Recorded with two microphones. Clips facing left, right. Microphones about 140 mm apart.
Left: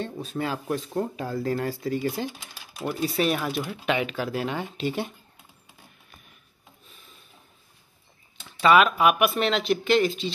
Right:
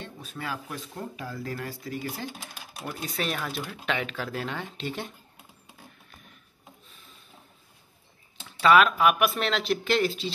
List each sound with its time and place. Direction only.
0.2 s speech: 25° left (ahead or behind)
1.9 s speech: 20° left (ahead or behind)
2.9 s speech: 5° left (ahead or behind)
8.5 s speech: 5° left (ahead or behind)